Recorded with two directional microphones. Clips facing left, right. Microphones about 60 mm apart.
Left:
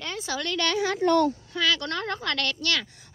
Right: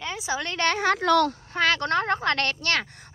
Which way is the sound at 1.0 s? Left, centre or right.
Right.